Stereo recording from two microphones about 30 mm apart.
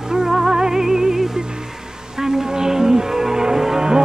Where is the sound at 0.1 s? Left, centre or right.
Centre.